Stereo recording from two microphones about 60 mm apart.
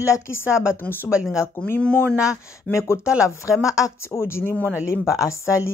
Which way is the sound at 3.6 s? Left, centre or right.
Left.